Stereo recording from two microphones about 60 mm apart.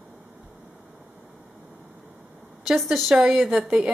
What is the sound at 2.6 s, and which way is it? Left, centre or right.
A woman's voice, centre.